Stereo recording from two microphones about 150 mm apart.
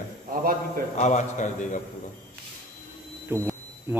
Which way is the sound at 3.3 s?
15° right (ahead or behind).